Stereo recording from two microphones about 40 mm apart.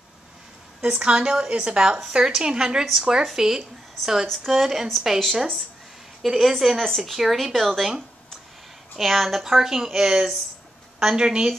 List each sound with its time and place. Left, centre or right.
0.8 s speech: right; by 7.9 s centre
8.9 s speech: centre; by 11.5 s right